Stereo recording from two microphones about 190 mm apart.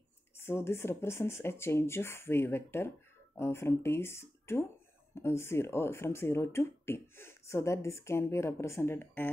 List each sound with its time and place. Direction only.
0.4 s speech: 15° left (ahead or behind)